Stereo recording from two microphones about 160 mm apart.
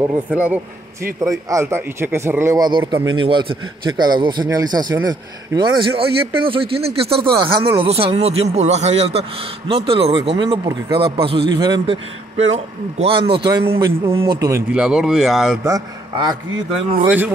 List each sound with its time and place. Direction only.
0.0 s speech: 10° right (ahead or behind)
1.2 s a man's voice: 20° right (ahead or behind)
14.7 s speech: 5° right (ahead or behind)
15.6 s a man's voice: 20° right (ahead or behind)